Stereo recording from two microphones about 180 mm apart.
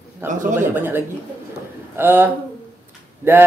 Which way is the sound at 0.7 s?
10° right (ahead or behind).